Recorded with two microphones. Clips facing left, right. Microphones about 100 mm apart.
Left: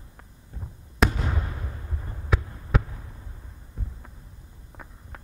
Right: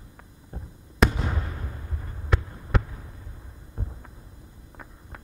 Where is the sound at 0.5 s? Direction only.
45° right (ahead or behind).